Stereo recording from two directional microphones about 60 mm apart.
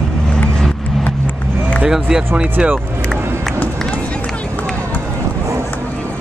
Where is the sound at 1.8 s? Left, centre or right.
Centre.